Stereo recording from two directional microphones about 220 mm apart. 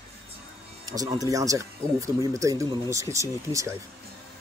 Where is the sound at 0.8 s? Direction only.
15° right (ahead or behind).